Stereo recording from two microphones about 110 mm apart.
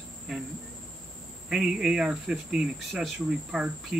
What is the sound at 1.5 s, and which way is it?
Speech, 5° right (ahead or behind).